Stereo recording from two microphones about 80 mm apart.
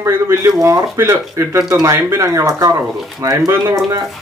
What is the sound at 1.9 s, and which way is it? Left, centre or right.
Speech, right.